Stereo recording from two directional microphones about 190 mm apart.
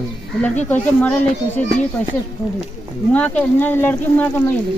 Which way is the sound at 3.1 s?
5° left (ahead or behind).